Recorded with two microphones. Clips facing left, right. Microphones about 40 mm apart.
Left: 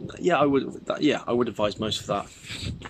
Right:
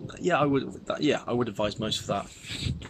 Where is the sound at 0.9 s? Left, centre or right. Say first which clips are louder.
Left 2 dB; left.